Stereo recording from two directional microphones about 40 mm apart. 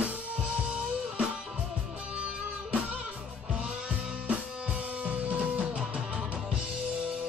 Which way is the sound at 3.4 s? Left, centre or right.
Right.